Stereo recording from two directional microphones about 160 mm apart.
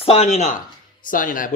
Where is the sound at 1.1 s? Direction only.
60° left (ahead or behind).